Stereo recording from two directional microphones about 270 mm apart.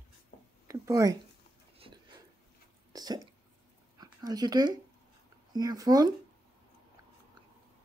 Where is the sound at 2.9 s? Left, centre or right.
Centre.